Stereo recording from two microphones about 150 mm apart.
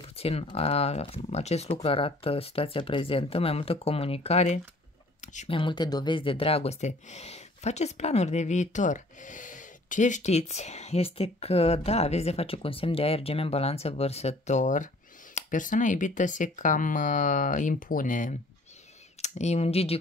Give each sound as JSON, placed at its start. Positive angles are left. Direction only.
{"t": 0.1, "sound": "speech", "side_deg": 40}
{"t": 5.2, "sound": "a sound", "side_deg": 55}
{"t": 5.5, "sound": "speech", "side_deg": 35}
{"t": 19.2, "sound": "speech", "side_deg": 50}